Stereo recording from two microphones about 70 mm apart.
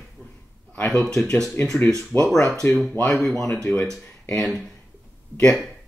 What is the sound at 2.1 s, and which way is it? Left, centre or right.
Speech, left.